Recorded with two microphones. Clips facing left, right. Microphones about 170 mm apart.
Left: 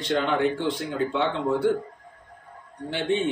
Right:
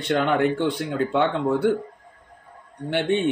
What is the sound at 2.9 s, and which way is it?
Speech, 60° right (ahead or behind).